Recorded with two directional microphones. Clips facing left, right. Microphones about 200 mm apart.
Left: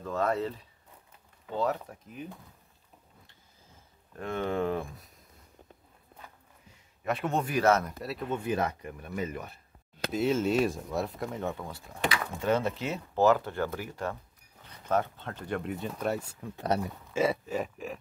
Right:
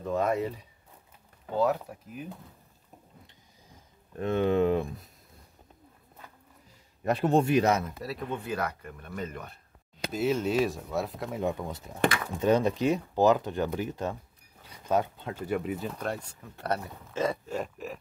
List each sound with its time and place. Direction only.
0.0 s speech: 15° right (ahead or behind)
3.6 s a sound: 20° right (ahead or behind)
7.1 s speech: 35° right (ahead or behind); by 7.8 s 20° right (ahead or behind)
7.8 s speech: centre (ahead or behind)
8.5 s speech: 20° left (ahead or behind)
8.9 s speech: 5° left (ahead or behind)
11.4 s speech: 20° right (ahead or behind); by 17.9 s centre (ahead or behind)